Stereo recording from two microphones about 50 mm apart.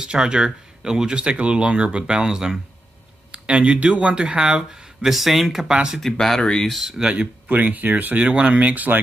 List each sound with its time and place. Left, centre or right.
0.0 s speech: centre
3.3 s speech: right; by 5.7 s centre
5.7 s speech: centre
5.9 s speech: centre
7.0 s speech: centre
7.4 s speech: right